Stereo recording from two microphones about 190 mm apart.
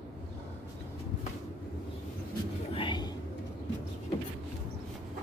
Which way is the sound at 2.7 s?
25° left (ahead or behind).